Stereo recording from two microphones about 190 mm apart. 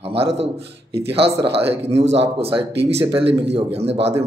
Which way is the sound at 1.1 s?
30° right (ahead or behind).